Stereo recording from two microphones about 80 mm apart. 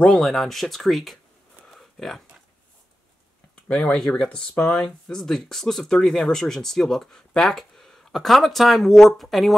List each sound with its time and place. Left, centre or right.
0.0 s speech: centre
1.7 s a sound: centre
3.6 s speech: centre